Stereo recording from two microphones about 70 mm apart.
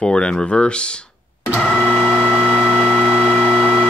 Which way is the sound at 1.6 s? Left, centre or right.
Centre.